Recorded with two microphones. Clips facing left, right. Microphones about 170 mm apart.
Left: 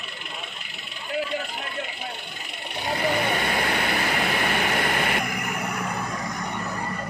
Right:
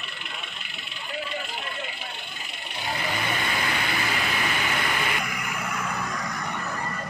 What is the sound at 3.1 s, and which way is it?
Vehicle, 55° left (ahead or behind).